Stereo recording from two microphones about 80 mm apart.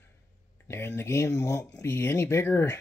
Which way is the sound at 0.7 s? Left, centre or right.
Left.